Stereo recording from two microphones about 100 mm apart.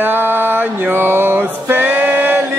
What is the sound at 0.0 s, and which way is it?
Music, 20° right (ahead or behind).